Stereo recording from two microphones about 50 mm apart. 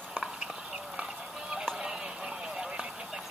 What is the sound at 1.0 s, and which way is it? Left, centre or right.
Music, right.